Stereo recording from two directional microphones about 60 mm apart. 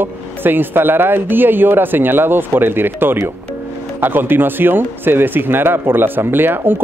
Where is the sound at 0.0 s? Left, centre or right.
Right.